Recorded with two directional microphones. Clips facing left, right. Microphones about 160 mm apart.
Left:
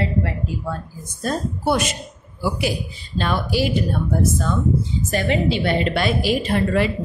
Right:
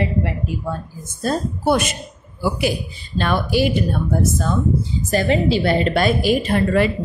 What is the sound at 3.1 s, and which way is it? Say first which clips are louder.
Speech: right 3 dB; 60° right (ahead or behind).